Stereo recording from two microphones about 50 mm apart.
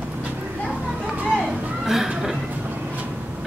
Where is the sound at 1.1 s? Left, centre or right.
Right.